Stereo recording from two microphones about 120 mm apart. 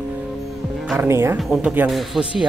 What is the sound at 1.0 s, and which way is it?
Speech, 20° right (ahead or behind).